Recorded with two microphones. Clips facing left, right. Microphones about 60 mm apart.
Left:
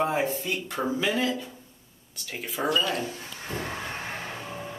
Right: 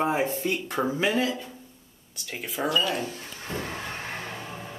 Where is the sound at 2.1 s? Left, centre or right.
Centre.